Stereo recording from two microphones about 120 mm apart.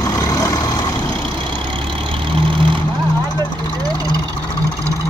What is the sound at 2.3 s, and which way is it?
Vehicle, 45° right (ahead or behind).